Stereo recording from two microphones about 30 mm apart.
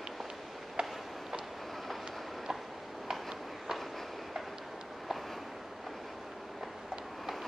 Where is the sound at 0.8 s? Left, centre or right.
Right.